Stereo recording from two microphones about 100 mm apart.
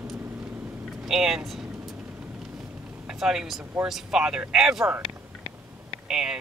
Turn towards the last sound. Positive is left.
turn(degrees=-5)  # may be behind; listen again after turning